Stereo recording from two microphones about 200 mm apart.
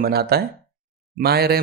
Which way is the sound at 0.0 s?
50° right (ahead or behind).